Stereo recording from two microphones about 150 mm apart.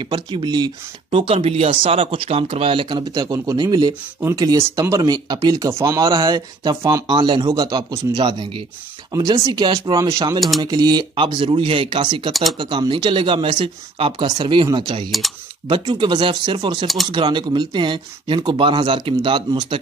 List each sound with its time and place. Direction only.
0.0 s speech: 30° right (ahead or behind)
1.1 s speech: 40° right (ahead or behind)
12.3 s speech: centre (ahead or behind)
12.5 s speech: 35° right (ahead or behind)
15.0 s speech: centre (ahead or behind)
15.9 s speech: 30° right (ahead or behind)
16.8 s speech: centre (ahead or behind)
17.1 s speech: 30° right (ahead or behind)